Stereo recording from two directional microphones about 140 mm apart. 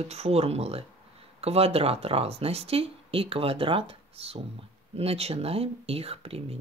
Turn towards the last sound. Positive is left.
turn(degrees=-45)  # may be behind; listen again after turning